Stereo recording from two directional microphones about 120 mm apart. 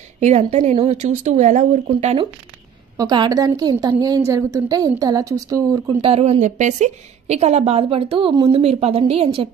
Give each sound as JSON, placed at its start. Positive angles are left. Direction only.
{"t": 0.2, "sound": "speech", "side_deg": -60}
{"t": 3.0, "sound": "a woman's voice", "side_deg": -35}
{"t": 5.9, "sound": "a woman's voice", "side_deg": -55}